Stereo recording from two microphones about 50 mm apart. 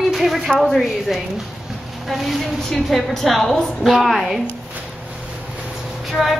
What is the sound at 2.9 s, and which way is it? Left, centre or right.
A woman's voice, centre.